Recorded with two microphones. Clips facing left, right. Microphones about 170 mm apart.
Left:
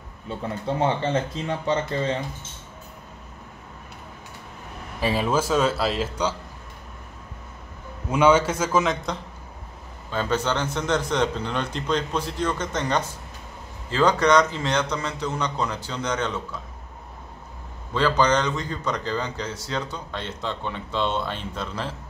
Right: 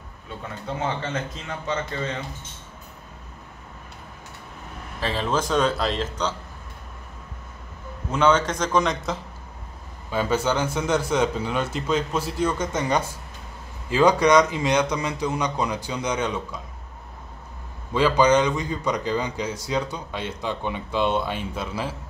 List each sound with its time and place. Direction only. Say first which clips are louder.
0.7 s speech: left 5 dB; 30° left (ahead or behind)
5.0 s speech: left 2 dB; 10° left (ahead or behind)
8.1 s a man's voice: left 2 dB; 10° left (ahead or behind); by 16.6 s 10° right (ahead or behind)
17.9 s a man's voice: right 3 dB; 10° right (ahead or behind)